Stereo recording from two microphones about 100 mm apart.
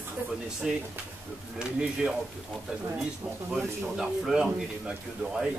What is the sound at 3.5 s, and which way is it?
Speech, 5° right (ahead or behind).